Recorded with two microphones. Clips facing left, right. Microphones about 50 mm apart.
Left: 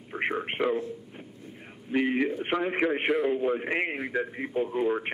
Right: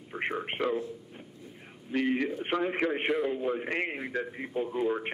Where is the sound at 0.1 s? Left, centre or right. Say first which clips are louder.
Left 3 dB; centre.